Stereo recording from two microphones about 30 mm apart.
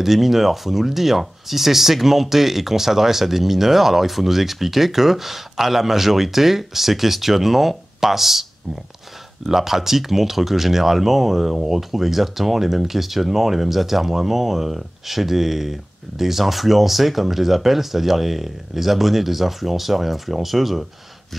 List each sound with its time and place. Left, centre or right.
0.0 s speech: centre
9.5 s speech: centre